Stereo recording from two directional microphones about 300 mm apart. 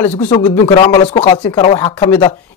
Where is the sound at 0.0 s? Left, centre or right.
Centre.